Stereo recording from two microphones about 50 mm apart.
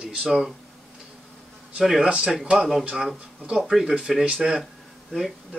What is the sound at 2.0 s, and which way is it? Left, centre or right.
Speech, centre.